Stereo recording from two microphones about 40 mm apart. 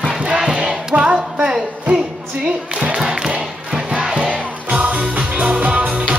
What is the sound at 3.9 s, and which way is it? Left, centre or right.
Music, right.